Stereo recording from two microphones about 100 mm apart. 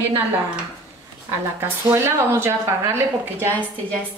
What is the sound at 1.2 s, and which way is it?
A woman's voice, 25° right (ahead or behind).